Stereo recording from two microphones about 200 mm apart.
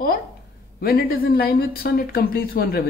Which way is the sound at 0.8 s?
50° left (ahead or behind).